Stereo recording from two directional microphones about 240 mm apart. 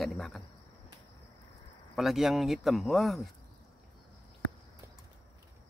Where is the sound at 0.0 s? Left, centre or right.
Centre.